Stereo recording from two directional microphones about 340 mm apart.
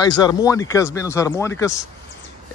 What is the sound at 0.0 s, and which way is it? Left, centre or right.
Speech, centre.